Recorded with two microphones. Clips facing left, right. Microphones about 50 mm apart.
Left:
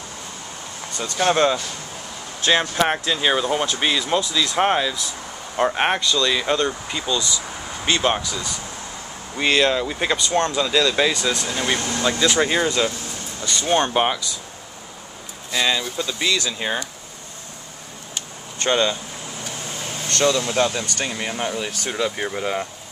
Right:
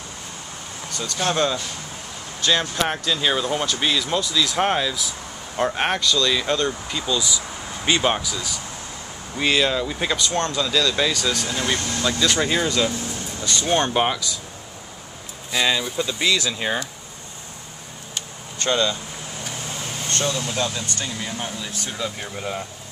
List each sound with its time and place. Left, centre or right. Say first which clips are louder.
0.9 s speech: left 4 dB; left
7.1 s speech: even; centre
13.4 s speech: left 1 dB; centre
15.5 s speech: even; centre
18.6 s speech: left 2 dB; left
20.1 s speech: left 6 dB; left